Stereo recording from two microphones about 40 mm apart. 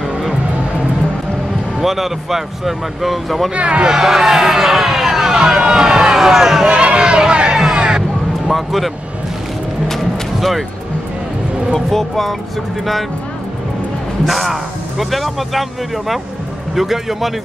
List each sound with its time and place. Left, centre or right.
1.8 s speech: centre
3.5 s speech: right
3.9 s vehicle: centre
5.6 s speech: centre
6.7 s speech: right
8.5 s speech: centre
9.8 s music: centre
11.7 s speech: centre
14.2 s speech: centre
16.7 s speech: centre